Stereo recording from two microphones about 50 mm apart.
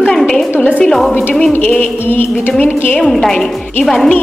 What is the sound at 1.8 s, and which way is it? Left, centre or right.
Music, left.